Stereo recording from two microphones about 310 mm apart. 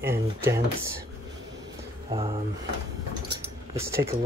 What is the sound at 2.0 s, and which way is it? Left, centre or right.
Speech, centre.